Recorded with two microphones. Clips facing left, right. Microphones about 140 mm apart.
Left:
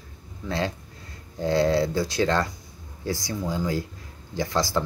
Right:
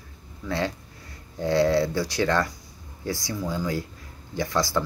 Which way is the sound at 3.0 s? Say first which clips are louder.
Left 1 dB; 20° right (ahead or behind).